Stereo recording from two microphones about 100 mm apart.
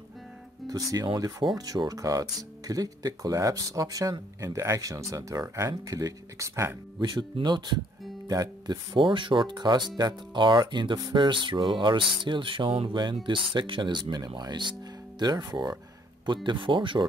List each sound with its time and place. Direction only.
0.7 s speech: 40° right (ahead or behind)
7.4 s speech: 50° right (ahead or behind)
8.3 s speech: 35° right (ahead or behind)
8.9 s speech: 55° right (ahead or behind)
16.4 s speech: 55° right (ahead or behind)